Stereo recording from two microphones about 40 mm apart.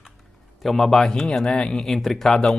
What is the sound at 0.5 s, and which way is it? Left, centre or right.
Speech, centre.